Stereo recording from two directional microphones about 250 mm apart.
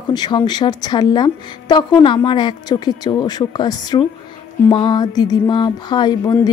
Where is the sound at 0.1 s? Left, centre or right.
Centre.